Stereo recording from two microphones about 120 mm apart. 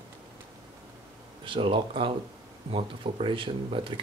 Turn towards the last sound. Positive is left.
turn(degrees=-45)  # may be behind; listen again after turning